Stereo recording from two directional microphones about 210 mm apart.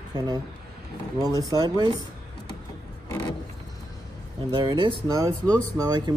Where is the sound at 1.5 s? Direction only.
20° right (ahead or behind).